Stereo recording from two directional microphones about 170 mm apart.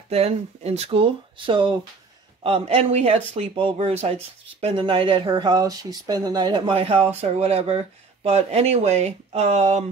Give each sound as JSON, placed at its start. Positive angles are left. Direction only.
{"t": 0.1, "sound": "speech", "side_deg": -40}